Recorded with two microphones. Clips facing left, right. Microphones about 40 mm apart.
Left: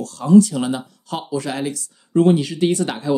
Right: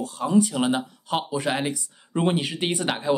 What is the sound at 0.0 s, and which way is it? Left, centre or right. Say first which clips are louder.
Speech: left 8 dB; right.